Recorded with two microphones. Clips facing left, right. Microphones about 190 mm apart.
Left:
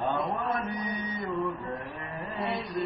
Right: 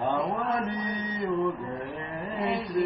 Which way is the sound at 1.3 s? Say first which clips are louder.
Right 4 dB; centre (ahead or behind).